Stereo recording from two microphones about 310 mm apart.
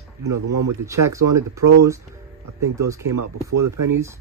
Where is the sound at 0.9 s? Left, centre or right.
Centre.